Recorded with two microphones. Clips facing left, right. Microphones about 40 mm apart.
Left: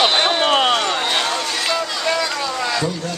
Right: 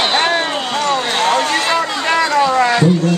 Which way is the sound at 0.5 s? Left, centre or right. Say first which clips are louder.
Left 3 dB; left.